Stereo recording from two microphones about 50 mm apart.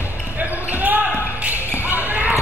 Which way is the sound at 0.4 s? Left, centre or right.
Right.